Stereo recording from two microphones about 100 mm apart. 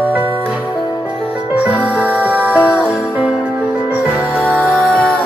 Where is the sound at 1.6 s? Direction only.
15° right (ahead or behind).